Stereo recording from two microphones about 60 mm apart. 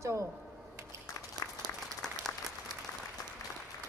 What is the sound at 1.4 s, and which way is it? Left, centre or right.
Applause, left.